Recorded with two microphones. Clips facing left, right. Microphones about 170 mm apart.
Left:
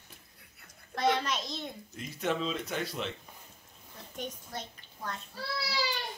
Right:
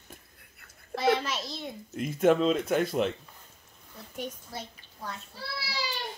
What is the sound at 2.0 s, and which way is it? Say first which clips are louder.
Speech: right 10 dB; 50° right (ahead or behind).